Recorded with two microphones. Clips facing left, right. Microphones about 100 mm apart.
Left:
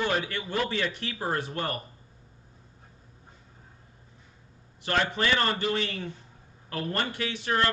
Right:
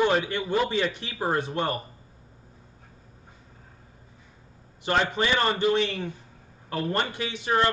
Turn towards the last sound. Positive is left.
turn(degrees=-20)  # may be behind; listen again after turning